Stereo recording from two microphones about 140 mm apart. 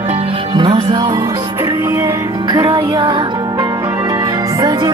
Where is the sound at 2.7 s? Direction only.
30° right (ahead or behind).